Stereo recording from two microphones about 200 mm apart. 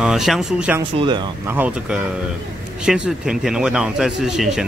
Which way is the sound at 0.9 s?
25° right (ahead or behind).